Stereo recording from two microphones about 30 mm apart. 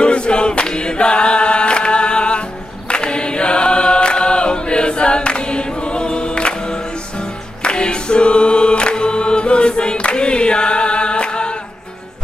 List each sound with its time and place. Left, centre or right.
0.0 s chant: left
2.9 s choir: left